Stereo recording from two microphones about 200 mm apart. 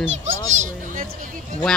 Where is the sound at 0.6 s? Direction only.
40° right (ahead or behind).